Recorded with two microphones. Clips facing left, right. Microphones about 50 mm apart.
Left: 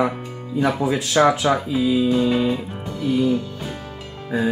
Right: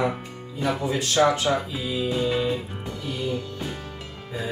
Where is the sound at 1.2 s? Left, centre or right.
Left.